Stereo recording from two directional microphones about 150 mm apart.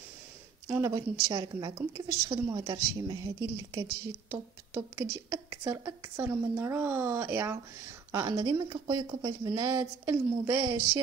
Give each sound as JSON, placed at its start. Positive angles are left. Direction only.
{"t": 0.7, "sound": "a woman's voice", "side_deg": -20}